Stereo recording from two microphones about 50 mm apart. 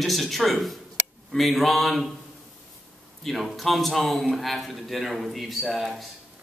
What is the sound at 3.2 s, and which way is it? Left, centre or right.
A man's voice, centre.